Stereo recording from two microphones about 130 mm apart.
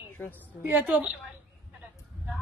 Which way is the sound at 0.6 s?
15° right (ahead or behind).